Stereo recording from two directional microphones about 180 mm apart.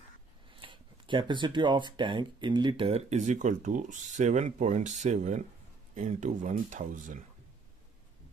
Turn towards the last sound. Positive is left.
turn(degrees=-45)  # may be behind; listen again after turning